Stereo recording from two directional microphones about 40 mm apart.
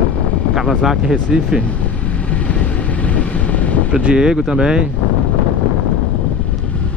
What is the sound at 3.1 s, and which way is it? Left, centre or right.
Vehicle, left.